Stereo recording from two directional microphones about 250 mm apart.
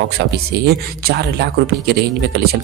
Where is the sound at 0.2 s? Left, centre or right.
Right.